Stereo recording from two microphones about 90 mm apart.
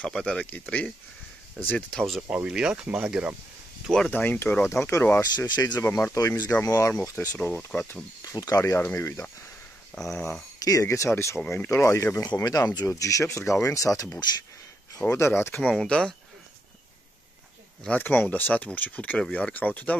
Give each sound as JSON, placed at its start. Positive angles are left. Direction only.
{"t": 0.0, "sound": "speech", "side_deg": 10}
{"t": 1.9, "sound": "speech", "side_deg": 5}
{"t": 2.2, "sound": "speech", "side_deg": -10}
{"t": 4.1, "sound": "speech", "side_deg": 20}
{"t": 5.2, "sound": "speech", "side_deg": 45}
{"t": 5.8, "sound": "speech", "side_deg": 30}
{"t": 6.9, "sound": "speech", "side_deg": 20}
{"t": 8.2, "sound": "speech", "side_deg": 40}
{"t": 8.7, "sound": "speech", "side_deg": 25}
{"t": 10.0, "sound": "speech", "side_deg": 0}
{"t": 10.6, "sound": "speech", "side_deg": 40}
{"t": 15.7, "sound": "speech", "side_deg": 5}
{"t": 17.8, "sound": "speech", "side_deg": 20}